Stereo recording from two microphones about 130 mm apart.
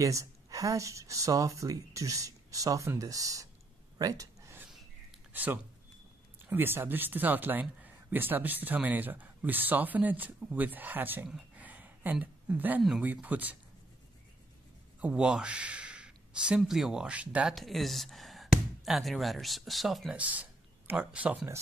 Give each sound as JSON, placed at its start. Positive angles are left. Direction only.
{"t": 0.0, "sound": "speech", "side_deg": -25}
{"t": 4.0, "sound": "a sound", "side_deg": -25}
{"t": 5.3, "sound": "speech", "side_deg": -15}
{"t": 11.2, "sound": "a sound", "side_deg": -10}
{"t": 13.0, "sound": "speech", "side_deg": -10}
{"t": 15.0, "sound": "speech", "side_deg": -10}
{"t": 17.6, "sound": "speech", "side_deg": 0}
{"t": 20.2, "sound": "speech", "side_deg": -10}